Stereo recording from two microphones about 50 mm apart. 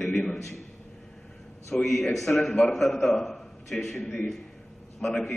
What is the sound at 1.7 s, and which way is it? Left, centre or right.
A man's voice, centre.